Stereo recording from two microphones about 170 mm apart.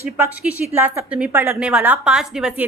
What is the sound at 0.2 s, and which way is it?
A woman's voice, 10° right (ahead or behind).